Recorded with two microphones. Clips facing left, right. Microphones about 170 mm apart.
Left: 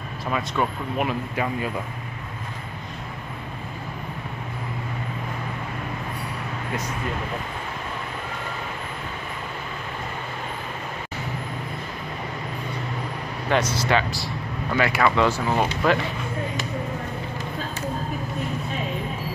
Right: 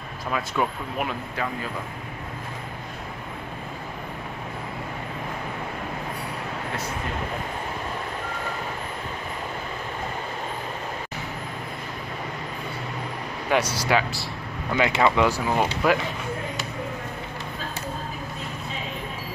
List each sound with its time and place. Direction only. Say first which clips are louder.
0.3 s speech: left 1 dB; centre (ahead or behind)
13.5 s speech: left 1 dB; 10° right (ahead or behind)
14.7 s speech: even; 20° right (ahead or behind)
15.1 s speech: left 1 dB; 10° right (ahead or behind)